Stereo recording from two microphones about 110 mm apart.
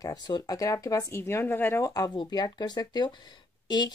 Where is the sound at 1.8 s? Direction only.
30° left (ahead or behind).